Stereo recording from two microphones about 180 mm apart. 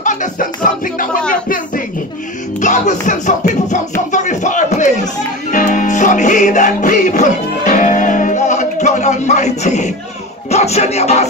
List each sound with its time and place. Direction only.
0.0 s music: 45° left (ahead or behind)
2.6 s music: 45° left (ahead or behind)
10.5 s speech: 35° left (ahead or behind)